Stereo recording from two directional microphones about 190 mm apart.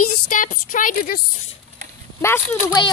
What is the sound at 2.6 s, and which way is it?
Speech, 25° left (ahead or behind).